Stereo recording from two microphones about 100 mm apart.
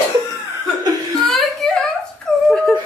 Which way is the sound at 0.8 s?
40° right (ahead or behind).